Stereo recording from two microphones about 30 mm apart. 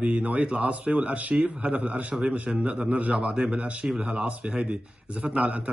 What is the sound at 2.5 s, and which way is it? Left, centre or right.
Speech, centre.